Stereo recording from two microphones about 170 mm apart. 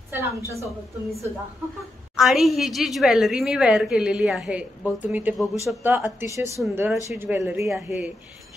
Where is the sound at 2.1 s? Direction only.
Centre (ahead or behind).